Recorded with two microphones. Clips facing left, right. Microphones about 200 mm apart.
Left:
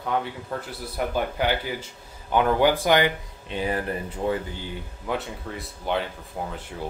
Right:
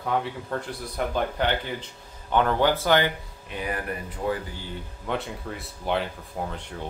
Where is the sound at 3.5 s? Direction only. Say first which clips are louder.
Left 4 dB; 25° left (ahead or behind).